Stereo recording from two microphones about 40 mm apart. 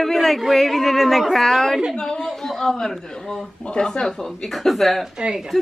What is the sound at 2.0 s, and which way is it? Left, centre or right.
Speech, centre.